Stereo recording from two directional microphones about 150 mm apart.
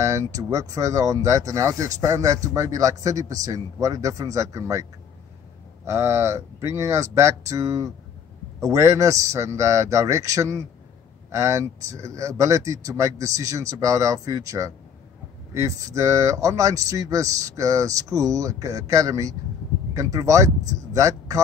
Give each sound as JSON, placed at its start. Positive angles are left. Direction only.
{"t": 0.0, "sound": "speech", "side_deg": -20}
{"t": 5.9, "sound": "speech", "side_deg": -20}